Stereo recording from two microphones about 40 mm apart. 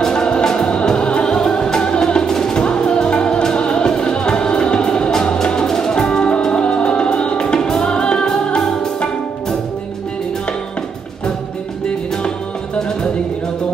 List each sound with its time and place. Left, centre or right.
0.0 s music: centre